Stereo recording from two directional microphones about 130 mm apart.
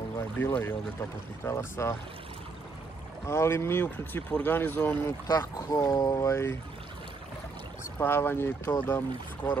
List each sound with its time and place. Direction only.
0.4 s speech: 15° left (ahead or behind)
3.3 s speech: 20° left (ahead or behind)
5.0 s speech: 25° left (ahead or behind)
8.0 s speech: 15° left (ahead or behind)